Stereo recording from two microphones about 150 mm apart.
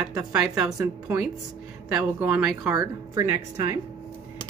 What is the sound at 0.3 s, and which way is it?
A woman's voice, 5° right (ahead or behind).